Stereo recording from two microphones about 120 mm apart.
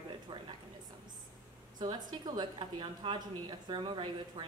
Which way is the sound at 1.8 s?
35° right (ahead or behind).